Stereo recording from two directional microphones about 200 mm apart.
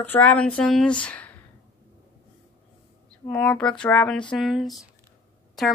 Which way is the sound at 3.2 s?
5° left (ahead or behind).